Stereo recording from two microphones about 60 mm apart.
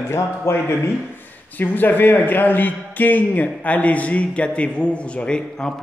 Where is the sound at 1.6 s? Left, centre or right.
Left.